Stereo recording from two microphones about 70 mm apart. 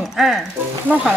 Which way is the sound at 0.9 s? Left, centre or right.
Left.